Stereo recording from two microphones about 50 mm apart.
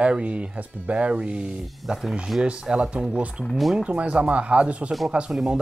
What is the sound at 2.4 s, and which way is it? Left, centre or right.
Speech, right.